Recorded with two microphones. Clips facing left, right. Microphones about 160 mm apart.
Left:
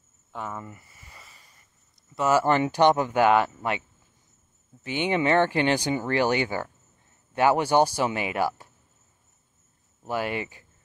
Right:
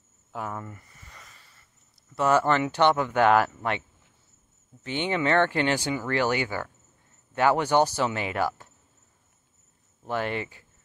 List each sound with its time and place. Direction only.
0.3 s a sound: centre (ahead or behind); by 1.7 s 15° left (ahead or behind)
2.1 s speech: 5° left (ahead or behind)
2.4 s speech: 15° left (ahead or behind)
4.8 s speech: 15° left (ahead or behind)
10.0 s speech: 10° left (ahead or behind)